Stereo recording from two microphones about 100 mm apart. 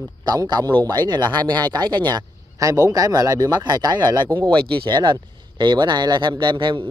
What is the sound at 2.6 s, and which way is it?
Speech, 35° right (ahead or behind).